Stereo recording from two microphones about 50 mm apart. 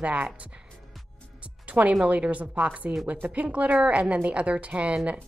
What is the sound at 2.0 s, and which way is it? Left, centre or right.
Speech, right.